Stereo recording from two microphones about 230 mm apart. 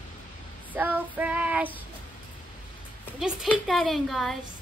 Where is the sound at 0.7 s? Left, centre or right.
Centre.